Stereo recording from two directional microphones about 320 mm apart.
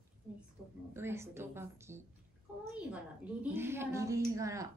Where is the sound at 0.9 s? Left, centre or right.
Centre.